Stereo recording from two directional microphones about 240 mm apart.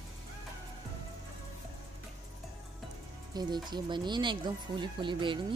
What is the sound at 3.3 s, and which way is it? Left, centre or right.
Speech, centre.